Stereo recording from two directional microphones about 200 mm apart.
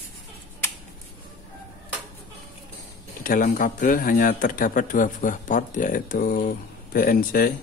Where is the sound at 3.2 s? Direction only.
40° left (ahead or behind).